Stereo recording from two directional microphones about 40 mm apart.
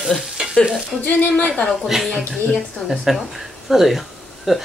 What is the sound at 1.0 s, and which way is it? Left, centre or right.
Speech, left.